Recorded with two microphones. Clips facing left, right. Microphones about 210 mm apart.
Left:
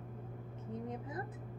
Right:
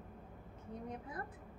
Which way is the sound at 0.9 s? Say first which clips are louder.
Left 3 dB; 20° left (ahead or behind).